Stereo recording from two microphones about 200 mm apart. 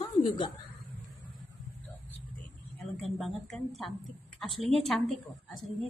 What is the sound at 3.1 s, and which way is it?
Speech, centre (ahead or behind).